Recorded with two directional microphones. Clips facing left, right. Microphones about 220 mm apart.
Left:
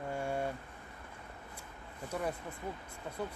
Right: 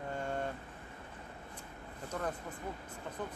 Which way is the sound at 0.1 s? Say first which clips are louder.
Left 2 dB; 10° left (ahead or behind).